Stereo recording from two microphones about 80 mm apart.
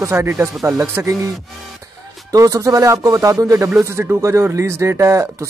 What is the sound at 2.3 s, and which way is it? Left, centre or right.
Speech, right.